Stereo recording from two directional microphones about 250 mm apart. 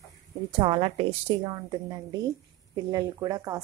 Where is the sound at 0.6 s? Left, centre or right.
Right.